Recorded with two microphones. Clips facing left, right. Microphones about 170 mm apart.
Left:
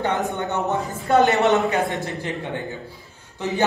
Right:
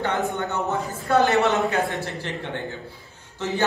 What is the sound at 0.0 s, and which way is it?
Speech, 20° left (ahead or behind).